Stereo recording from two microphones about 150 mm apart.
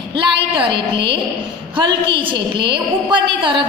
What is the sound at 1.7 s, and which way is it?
A woman's voice, 35° right (ahead or behind).